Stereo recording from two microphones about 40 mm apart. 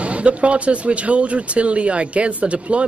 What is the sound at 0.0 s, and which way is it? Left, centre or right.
Speech, right.